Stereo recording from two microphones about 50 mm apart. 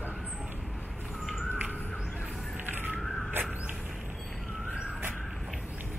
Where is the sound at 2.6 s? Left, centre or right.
Right.